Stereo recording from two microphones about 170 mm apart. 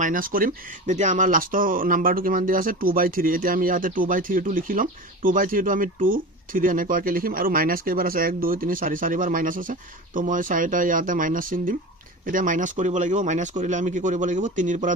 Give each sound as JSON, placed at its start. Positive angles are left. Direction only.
{"t": 0.0, "sound": "speech", "side_deg": -55}